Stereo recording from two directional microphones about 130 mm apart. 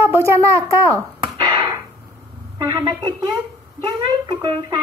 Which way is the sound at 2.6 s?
40° right (ahead or behind).